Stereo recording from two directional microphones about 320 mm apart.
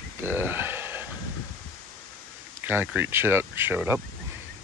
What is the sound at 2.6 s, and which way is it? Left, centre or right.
Speech, centre.